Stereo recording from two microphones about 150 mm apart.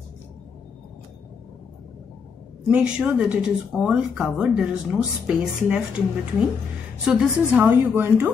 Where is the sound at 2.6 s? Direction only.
5° right (ahead or behind).